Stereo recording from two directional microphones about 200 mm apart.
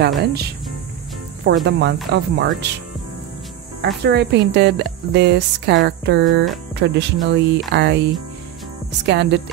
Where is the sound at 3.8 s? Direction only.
55° right (ahead or behind).